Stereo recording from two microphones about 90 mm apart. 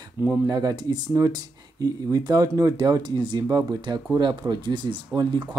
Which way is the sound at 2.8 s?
55° right (ahead or behind).